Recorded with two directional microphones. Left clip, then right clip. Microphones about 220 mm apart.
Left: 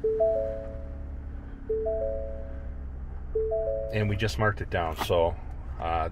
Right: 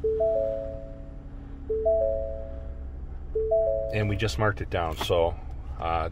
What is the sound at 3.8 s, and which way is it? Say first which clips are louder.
Speech: right 1 dB; 5° right (ahead or behind).